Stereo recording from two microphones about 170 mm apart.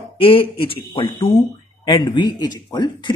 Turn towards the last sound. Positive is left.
turn(degrees=25)  # may be behind; listen again after turning